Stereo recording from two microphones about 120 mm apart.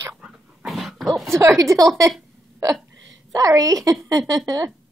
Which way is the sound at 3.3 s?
30° right (ahead or behind).